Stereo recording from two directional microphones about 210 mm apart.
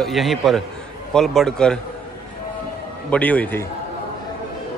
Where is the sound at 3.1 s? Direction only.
5° left (ahead or behind).